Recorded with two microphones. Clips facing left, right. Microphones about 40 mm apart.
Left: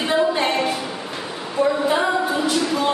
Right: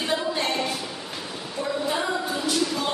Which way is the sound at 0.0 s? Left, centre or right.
Left.